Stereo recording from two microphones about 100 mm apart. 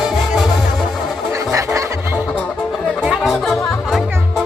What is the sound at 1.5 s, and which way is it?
Music, 30° right (ahead or behind).